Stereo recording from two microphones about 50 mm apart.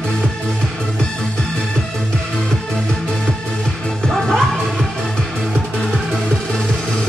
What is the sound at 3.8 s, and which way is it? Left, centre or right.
Music, centre.